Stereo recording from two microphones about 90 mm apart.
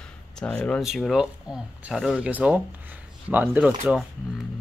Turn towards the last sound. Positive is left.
turn(degrees=-15)  # may be behind; listen again after turning